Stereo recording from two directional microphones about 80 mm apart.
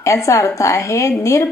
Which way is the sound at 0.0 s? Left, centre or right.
Left.